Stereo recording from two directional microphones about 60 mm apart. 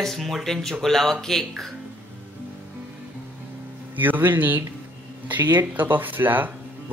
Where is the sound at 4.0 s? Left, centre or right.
Right.